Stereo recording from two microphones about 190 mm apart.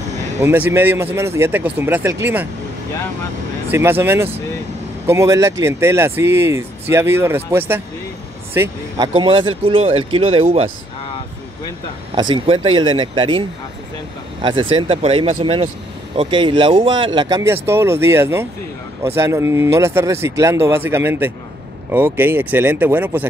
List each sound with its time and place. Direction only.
0.4 s speech: 10° right (ahead or behind)
3.7 s speech: 10° right (ahead or behind); by 10.7 s 30° right (ahead or behind)
12.2 s speech: 25° right (ahead or behind)